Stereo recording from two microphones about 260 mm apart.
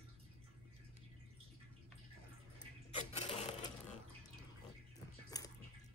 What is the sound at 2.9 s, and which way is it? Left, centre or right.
Sewing machine, left.